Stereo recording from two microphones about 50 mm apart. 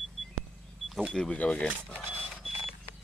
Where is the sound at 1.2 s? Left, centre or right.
Centre.